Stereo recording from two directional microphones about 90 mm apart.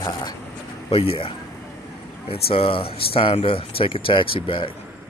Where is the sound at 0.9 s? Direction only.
90° left; by 4.7 s 70° left (ahead or behind).